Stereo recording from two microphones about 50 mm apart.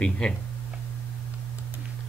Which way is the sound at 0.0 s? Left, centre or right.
Centre.